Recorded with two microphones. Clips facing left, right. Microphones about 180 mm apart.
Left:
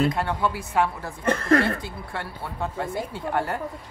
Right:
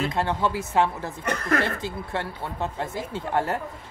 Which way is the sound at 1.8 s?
25° right (ahead or behind).